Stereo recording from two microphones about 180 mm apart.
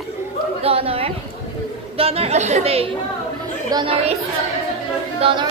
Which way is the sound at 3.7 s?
25° right (ahead or behind).